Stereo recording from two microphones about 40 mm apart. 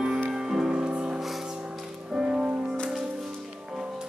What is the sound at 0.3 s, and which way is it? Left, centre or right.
Music, centre.